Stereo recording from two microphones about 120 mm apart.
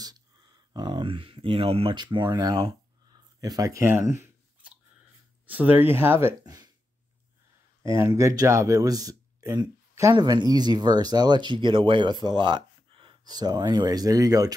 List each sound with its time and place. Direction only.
0.7 s speech: 40° right (ahead or behind); by 4.3 s 20° right (ahead or behind)
5.5 s speech: 15° right (ahead or behind)
6.4 s speech: 35° right (ahead or behind)
7.8 s speech: 25° right (ahead or behind)